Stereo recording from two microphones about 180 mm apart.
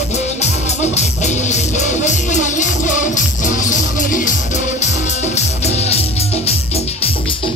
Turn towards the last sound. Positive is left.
turn(degrees=35)  # may be behind; listen again after turning